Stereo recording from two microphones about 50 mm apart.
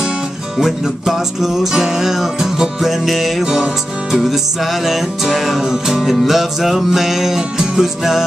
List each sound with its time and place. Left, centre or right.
0.6 s music: centre